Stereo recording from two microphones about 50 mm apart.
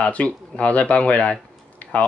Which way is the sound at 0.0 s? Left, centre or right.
Left.